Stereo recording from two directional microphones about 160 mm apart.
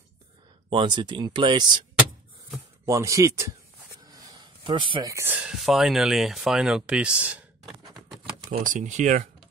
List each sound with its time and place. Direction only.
0.7 s speech: 30° right (ahead or behind)
2.9 s speech: 20° right (ahead or behind)
4.1 s a sound: 25° right (ahead or behind)
5.0 s speech: 15° right (ahead or behind)
7.8 s a sound: 25° right (ahead or behind)
8.5 s speech: 50° right (ahead or behind)